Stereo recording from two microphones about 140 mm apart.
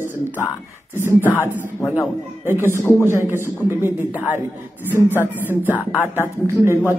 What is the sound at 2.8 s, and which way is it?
Speech, 20° left (ahead or behind).